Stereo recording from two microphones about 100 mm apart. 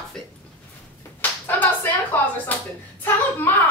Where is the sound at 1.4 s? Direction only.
20° left (ahead or behind).